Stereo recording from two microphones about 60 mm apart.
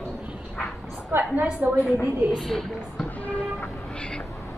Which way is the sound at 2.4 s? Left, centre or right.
Centre.